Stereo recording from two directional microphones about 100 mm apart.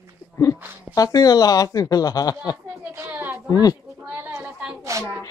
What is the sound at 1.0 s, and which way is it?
Speech, 40° left (ahead or behind).